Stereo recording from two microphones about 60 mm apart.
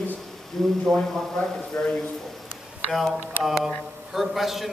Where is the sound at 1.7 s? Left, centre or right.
Centre.